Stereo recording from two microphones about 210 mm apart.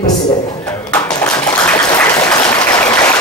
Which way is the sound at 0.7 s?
10° left (ahead or behind).